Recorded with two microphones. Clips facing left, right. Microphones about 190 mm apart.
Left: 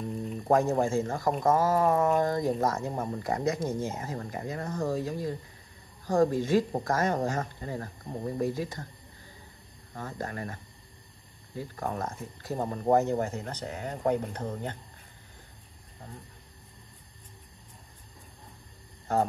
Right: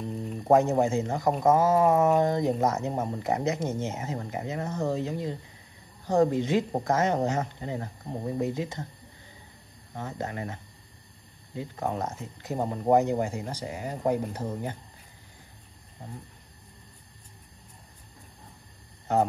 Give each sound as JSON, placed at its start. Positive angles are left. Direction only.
{"t": 0.5, "sound": "speech", "side_deg": -20}
{"t": 9.9, "sound": "speech", "side_deg": -20}
{"t": 19.1, "sound": "speech", "side_deg": -20}